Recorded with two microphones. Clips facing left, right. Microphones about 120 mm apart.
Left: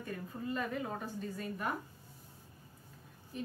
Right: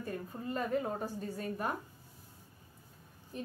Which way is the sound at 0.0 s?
35° right (ahead or behind).